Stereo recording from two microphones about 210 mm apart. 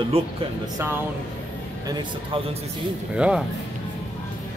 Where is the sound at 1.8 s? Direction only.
25° right (ahead or behind).